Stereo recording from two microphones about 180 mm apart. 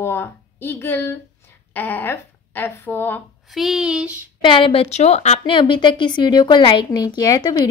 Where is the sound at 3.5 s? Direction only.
Centre (ahead or behind).